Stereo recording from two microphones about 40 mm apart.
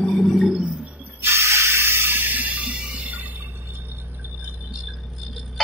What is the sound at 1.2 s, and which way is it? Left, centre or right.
Spray, right.